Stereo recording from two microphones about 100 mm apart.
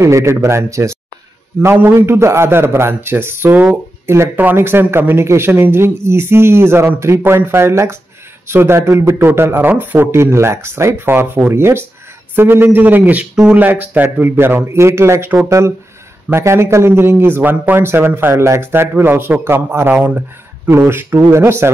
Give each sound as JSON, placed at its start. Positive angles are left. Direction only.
{"t": 0.0, "sound": "a man's voice", "side_deg": -30}
{"t": 20.7, "sound": "a man's voice", "side_deg": -25}